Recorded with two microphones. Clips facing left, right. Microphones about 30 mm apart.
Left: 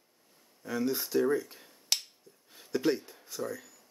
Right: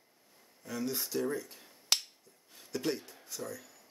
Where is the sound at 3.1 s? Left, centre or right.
Centre.